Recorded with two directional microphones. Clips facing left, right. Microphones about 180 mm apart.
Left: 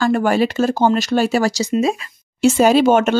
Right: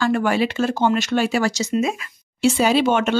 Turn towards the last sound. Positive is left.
turn(degrees=45)  # may be behind; listen again after turning